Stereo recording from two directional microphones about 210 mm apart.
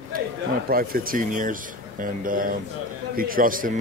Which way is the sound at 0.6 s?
45° right (ahead or behind).